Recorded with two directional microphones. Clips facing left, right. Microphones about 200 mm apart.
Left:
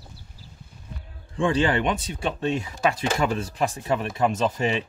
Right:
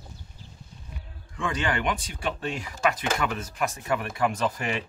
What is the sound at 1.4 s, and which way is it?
Speech, 30° left (ahead or behind).